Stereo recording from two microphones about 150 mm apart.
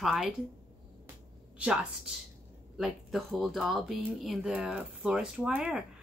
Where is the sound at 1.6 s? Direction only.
5° right (ahead or behind).